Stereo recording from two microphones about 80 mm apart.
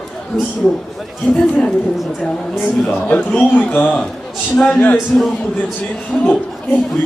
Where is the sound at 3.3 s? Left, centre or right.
Centre.